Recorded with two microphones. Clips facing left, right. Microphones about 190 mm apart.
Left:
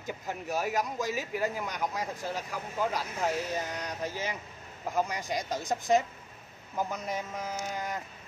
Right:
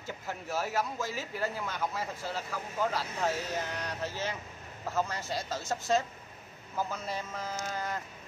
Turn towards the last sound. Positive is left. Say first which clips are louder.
# left 1 dB
turn(degrees=15)  # may be behind; listen again after turning